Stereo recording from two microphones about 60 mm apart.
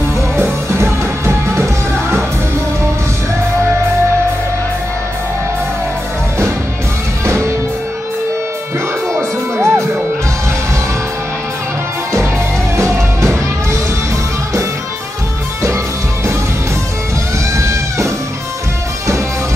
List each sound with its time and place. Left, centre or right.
0.4 s music: right
7.2 s music: right
9.1 s music: right
12.7 s music: right
17.6 s music: right